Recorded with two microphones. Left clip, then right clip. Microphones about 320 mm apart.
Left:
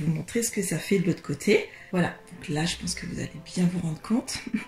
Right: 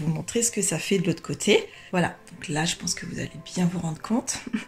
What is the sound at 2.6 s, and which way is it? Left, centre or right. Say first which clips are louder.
Speech: right 4 dB; right.